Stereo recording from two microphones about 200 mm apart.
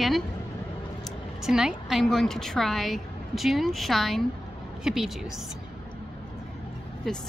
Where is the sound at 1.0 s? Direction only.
Centre (ahead or behind).